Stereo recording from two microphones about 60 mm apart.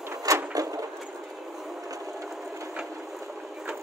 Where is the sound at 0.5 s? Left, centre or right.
Right.